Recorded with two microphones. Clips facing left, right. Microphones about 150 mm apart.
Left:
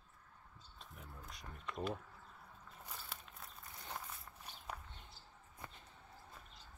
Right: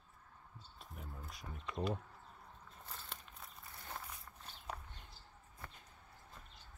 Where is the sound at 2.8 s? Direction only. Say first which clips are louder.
Even; 10° left (ahead or behind).